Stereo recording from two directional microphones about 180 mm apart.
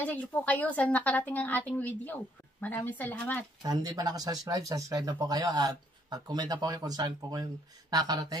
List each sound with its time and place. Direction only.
0.0 s a woman's voice: 10° left (ahead or behind)
3.6 s speech: 20° right (ahead or behind)